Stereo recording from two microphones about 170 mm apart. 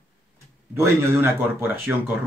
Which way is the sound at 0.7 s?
15° right (ahead or behind).